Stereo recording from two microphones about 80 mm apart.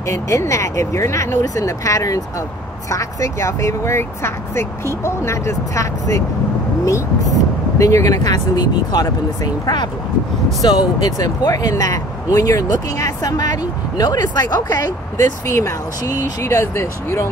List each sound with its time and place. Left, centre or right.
0.0 s speech: left
10.6 s speech: left
11.1 s speech: left
15.5 s speech: left